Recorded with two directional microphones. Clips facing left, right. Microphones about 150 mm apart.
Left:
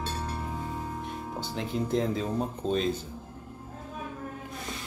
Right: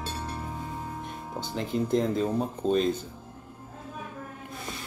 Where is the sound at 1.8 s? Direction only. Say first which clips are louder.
Right 3 dB; centre (ahead or behind).